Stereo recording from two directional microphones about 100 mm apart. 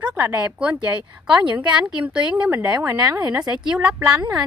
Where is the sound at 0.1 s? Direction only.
15° right (ahead or behind).